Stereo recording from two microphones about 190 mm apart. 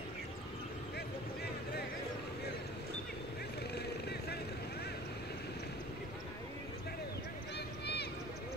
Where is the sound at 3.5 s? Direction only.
60° left (ahead or behind).